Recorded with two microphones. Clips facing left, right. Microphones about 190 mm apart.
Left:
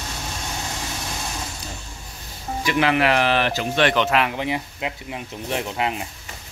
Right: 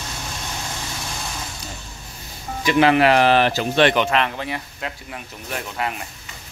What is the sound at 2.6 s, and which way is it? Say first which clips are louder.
Speech: right 4 dB; 35° right (ahead or behind).